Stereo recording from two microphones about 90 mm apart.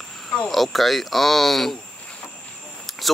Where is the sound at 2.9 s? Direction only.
Centre (ahead or behind).